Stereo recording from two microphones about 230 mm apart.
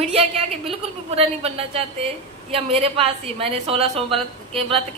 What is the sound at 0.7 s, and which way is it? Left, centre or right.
A woman's voice, right.